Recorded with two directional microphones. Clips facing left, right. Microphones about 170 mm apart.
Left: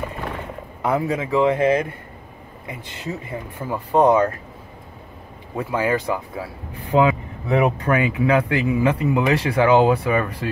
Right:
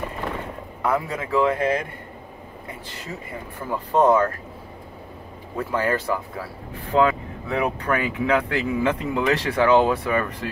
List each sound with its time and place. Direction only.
0.8 s speech: 20° left (ahead or behind)
3.7 s speech: 15° left (ahead or behind)
5.6 s speech: 10° left (ahead or behind)
6.9 s vehicle: 10° left (ahead or behind)
7.8 s speech: 5° left (ahead or behind)